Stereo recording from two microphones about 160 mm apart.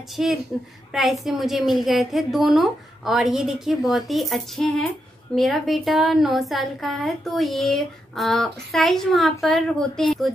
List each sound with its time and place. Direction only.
0.1 s a woman's voice: 5° right (ahead or behind)